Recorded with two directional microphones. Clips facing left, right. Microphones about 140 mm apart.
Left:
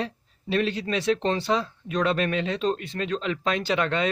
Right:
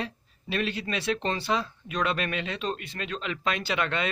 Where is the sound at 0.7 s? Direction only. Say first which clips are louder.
Left 4 dB; 10° right (ahead or behind).